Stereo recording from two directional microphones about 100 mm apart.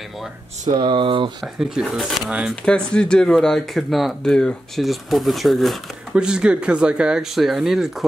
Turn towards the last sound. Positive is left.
turn(degrees=-5)  # may be behind; listen again after turning